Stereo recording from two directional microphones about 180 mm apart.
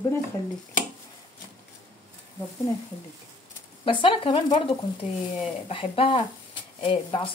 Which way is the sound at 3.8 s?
30° left (ahead or behind).